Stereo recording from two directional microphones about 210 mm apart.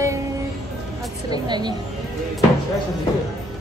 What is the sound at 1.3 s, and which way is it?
Speech, 20° right (ahead or behind).